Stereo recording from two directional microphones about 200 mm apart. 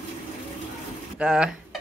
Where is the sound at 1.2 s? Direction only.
5° right (ahead or behind).